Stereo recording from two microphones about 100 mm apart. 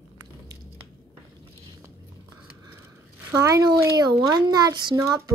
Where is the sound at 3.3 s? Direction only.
30° right (ahead or behind).